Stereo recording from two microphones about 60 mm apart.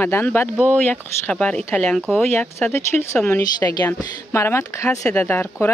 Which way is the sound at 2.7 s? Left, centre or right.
Left.